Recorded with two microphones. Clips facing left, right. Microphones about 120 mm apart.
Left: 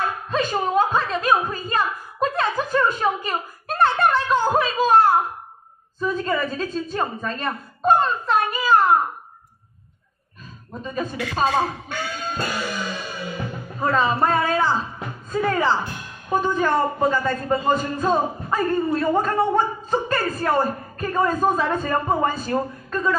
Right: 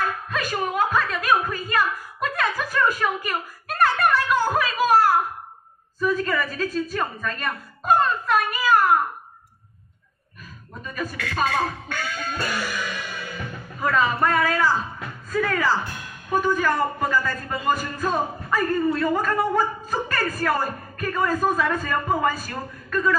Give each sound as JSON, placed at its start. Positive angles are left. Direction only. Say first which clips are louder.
{"t": 0.3, "sound": "a sound", "louder": "left 4 dB", "side_deg": 25}
{"t": 5.9, "sound": "a woman's voice", "louder": "even", "side_deg": 25}
{"t": 10.8, "sound": "a man's voice", "louder": "left 4 dB", "side_deg": 25}